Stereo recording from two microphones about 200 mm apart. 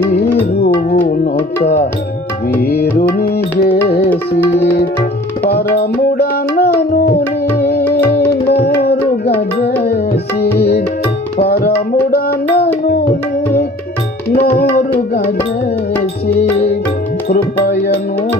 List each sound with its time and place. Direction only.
0.8 s music: 45° left (ahead or behind)
2.6 s music: 50° left (ahead or behind)
5.5 s music: 50° left (ahead or behind)
11.4 s music: 50° left (ahead or behind)
14.3 s tabla: 45° left (ahead or behind)
17.3 s music: 45° left (ahead or behind)